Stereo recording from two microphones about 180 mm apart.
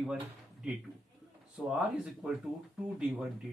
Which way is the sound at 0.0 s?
5° right (ahead or behind).